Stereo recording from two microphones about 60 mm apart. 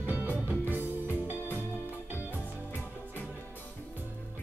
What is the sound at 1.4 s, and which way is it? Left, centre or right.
Music, left.